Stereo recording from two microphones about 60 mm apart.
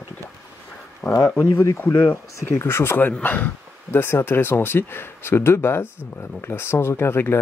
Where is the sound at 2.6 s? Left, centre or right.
Left.